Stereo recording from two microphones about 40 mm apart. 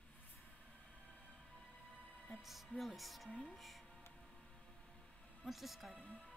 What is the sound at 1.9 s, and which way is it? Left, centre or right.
Music, right.